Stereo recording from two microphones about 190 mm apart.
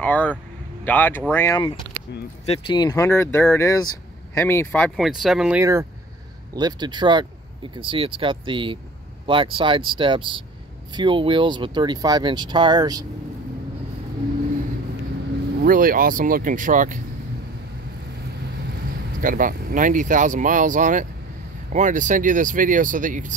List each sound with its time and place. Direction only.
0.0 s speech: 10° left (ahead or behind)
2.4 s speech: 30° left (ahead or behind); by 5.6 s centre (ahead or behind)
5.6 s speech: 15° right (ahead or behind)
15.6 s speech: 50° right (ahead or behind)
19.1 s speech: 45° right (ahead or behind)